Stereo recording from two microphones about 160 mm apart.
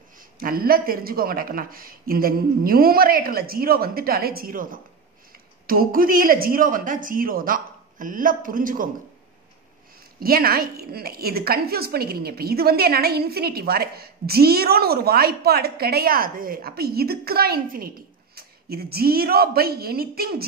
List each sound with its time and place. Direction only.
0.4 s a woman's voice: 65° right (ahead or behind)
10.2 s a woman's voice: 70° right (ahead or behind)